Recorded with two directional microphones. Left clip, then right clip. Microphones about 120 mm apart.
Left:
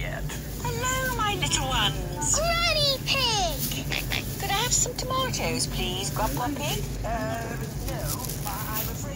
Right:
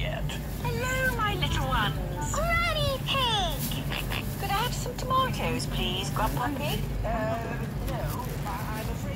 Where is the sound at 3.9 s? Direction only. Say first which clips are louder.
Left 5 dB; 40° left (ahead or behind).